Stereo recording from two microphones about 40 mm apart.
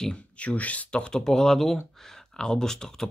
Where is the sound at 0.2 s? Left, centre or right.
Left.